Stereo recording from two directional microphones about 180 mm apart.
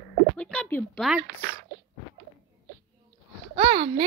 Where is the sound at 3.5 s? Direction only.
35° right (ahead or behind).